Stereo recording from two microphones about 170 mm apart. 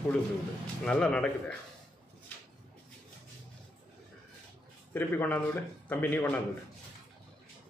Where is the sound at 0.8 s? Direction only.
5° left (ahead or behind).